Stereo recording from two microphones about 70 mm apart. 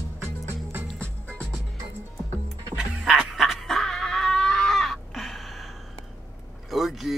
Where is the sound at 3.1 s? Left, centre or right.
Centre.